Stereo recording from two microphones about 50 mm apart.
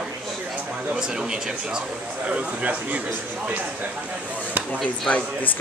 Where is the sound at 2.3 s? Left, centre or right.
Right.